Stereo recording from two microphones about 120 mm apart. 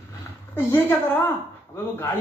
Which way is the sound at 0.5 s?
20° left (ahead or behind).